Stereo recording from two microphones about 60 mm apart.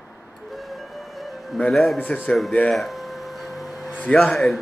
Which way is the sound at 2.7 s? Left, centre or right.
Centre.